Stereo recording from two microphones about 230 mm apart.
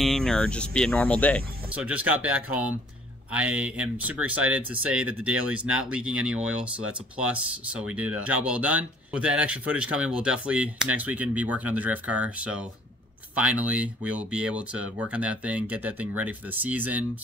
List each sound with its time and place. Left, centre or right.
0.0 s speech: centre
1.7 s speech: centre